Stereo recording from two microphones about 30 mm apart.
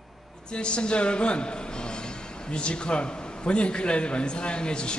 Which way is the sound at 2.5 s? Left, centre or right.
Left.